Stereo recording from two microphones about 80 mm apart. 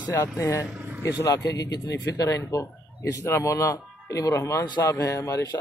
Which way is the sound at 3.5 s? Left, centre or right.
Left.